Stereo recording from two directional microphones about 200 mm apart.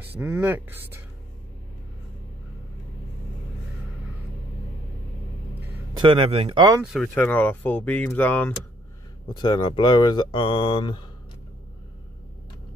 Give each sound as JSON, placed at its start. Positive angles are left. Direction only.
{"t": 0.2, "sound": "speech", "side_deg": -10}
{"t": 5.9, "sound": "speech", "side_deg": -25}
{"t": 6.8, "sound": "speech", "side_deg": 0}
{"t": 9.4, "sound": "speech", "side_deg": 25}